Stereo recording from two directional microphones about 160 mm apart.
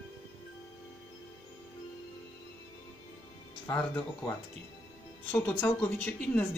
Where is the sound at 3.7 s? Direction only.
5° left (ahead or behind).